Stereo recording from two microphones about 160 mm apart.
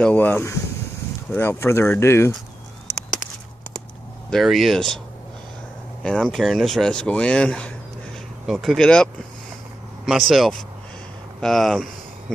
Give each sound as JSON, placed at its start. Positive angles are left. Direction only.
{"t": 0.0, "sound": "speech", "side_deg": 10}
{"t": 4.3, "sound": "speech", "side_deg": 0}
{"t": 6.0, "sound": "speech", "side_deg": 0}